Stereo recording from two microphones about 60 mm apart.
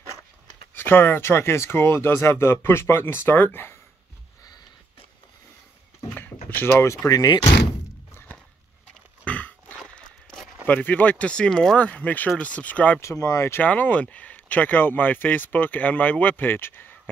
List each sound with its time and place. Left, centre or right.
0.7 s speech: left
6.1 s a sound: left
7.1 s speech: left
9.2 s grunt: left
9.8 s a sound: centre
10.7 s speech: left
11.8 s speech: left
13.0 s speech: left
13.6 s speech: left